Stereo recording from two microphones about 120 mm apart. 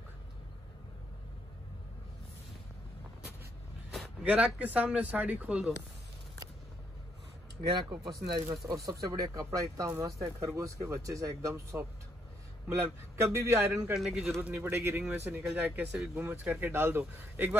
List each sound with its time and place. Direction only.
4.2 s speech: 10° right (ahead or behind)
7.7 s speech: 40° right (ahead or behind); by 13.7 s 20° right (ahead or behind)
13.9 s speech: 5° right (ahead or behind)
14.5 s speech: 20° right (ahead or behind)